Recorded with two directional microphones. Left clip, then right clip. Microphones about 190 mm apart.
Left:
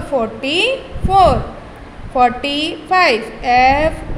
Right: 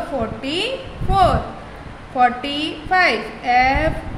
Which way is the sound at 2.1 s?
25° left (ahead or behind).